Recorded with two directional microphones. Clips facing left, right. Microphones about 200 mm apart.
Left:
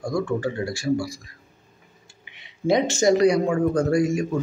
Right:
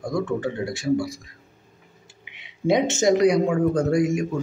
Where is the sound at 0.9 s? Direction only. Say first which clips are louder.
Right 2 dB; 20° right (ahead or behind).